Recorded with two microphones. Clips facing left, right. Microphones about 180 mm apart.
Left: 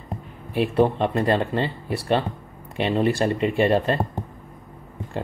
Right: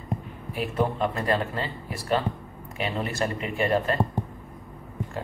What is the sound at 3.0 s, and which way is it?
Speech, 25° left (ahead or behind).